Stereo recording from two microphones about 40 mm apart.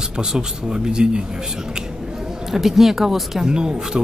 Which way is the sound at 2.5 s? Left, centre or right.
Centre.